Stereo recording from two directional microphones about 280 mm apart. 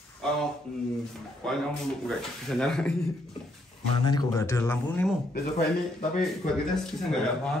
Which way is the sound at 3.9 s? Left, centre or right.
Centre.